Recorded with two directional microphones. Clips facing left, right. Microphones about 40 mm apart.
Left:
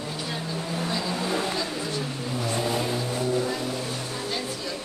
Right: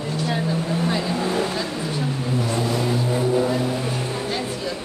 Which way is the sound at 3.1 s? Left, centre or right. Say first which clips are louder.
Right 7 dB; centre.